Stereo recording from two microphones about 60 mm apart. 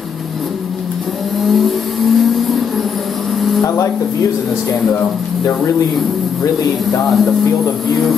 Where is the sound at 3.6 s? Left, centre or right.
Left.